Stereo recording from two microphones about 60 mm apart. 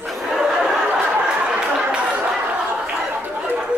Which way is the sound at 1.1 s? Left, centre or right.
Centre.